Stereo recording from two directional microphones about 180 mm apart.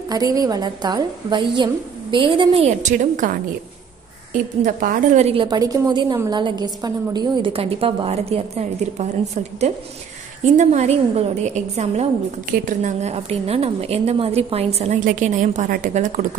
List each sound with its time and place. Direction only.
0.1 s a woman's voice: 20° right (ahead or behind); by 16.2 s 45° right (ahead or behind)